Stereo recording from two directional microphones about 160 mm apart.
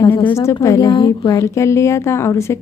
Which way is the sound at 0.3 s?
20° left (ahead or behind).